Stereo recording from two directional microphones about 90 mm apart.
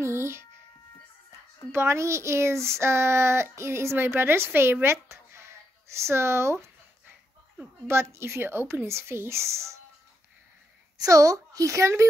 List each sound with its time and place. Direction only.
0.0 s a sound: 30° right (ahead or behind)
1.7 s a child's voice: 30° right (ahead or behind)
5.0 s a sound: 30° right (ahead or behind)
5.9 s speech: 30° right (ahead or behind)
7.8 s speech: 30° right (ahead or behind)
11.0 s speech: 40° right (ahead or behind)